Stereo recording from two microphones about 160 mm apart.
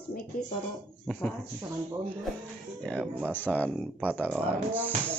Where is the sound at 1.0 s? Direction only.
10° left (ahead or behind).